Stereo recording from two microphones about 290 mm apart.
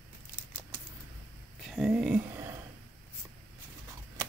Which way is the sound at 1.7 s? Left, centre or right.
Centre.